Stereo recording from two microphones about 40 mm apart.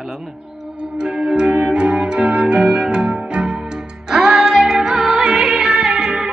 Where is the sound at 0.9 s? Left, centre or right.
Right.